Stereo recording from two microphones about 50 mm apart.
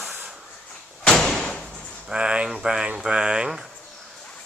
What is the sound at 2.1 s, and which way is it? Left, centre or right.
Speech, right.